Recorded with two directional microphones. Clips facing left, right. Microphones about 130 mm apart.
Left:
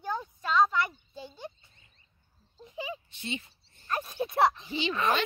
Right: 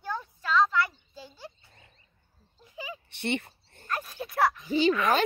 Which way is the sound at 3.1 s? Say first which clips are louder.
Right 7 dB; 65° right (ahead or behind).